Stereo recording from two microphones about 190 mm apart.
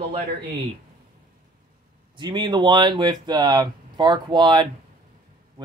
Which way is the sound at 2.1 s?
25° right (ahead or behind).